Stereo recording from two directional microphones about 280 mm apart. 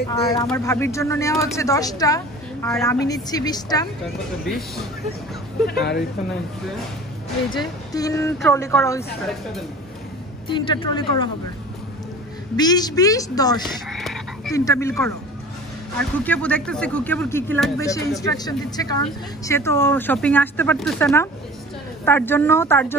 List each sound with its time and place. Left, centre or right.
0.1 s speech: centre
4.5 s speech: centre
5.7 s speech: left
7.5 s speech: centre
10.5 s speech: centre
12.5 s speech: centre
13.7 s frog: centre
14.5 s speech: centre
16.0 s speech: centre